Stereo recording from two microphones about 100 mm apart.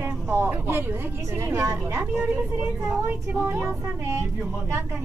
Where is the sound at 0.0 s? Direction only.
25° right (ahead or behind).